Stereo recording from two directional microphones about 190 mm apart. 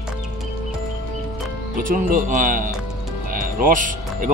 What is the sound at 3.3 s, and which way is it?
Music, 45° right (ahead or behind).